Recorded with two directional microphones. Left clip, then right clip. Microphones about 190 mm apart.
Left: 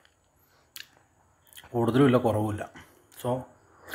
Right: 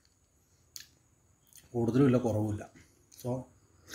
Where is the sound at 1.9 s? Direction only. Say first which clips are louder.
Left 5 dB; 15° right (ahead or behind).